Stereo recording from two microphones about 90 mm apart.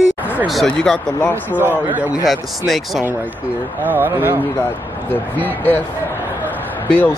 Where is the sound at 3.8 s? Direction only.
20° right (ahead or behind).